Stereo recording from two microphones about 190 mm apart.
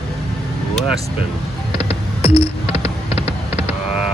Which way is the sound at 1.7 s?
30° left (ahead or behind).